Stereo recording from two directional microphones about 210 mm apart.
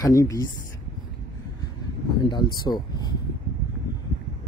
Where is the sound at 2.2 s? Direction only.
20° left (ahead or behind).